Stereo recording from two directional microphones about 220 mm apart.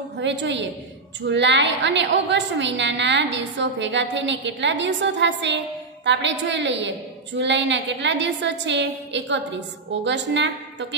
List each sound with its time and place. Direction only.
0.2 s a woman's voice: 55° right (ahead or behind)